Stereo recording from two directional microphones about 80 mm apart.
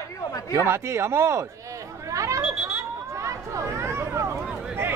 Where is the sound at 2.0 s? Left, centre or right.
Right.